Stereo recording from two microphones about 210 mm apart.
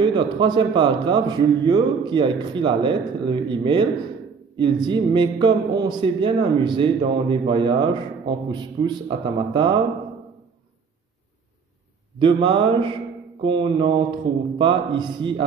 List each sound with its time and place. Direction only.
0.0 s a man's voice: 20° right (ahead or behind)
12.2 s a man's voice: 25° right (ahead or behind)